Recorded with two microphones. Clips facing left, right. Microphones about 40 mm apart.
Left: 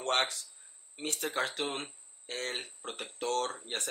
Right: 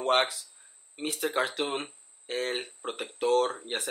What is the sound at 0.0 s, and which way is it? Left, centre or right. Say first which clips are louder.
Speech: right 5 dB; centre.